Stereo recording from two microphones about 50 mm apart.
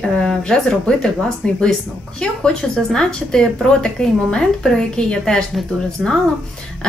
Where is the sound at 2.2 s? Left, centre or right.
Centre.